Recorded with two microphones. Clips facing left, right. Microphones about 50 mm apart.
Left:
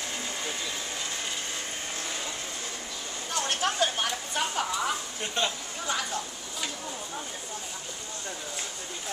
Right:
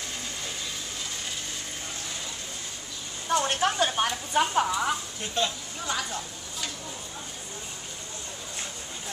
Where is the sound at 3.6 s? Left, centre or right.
Centre.